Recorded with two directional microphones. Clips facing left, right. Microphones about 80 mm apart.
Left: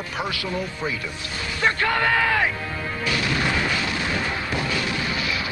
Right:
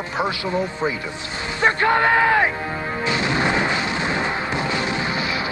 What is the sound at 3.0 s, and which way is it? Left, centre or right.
Music, right.